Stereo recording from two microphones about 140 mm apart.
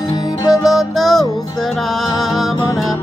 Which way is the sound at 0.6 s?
Centre (ahead or behind).